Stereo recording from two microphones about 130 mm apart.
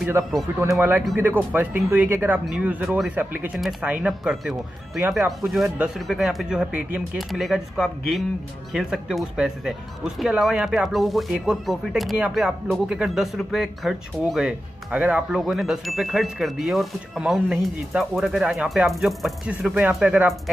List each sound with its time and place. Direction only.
0.2 s speech: 20° right (ahead or behind)